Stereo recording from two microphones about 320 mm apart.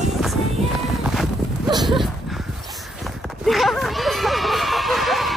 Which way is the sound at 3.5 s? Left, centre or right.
Centre.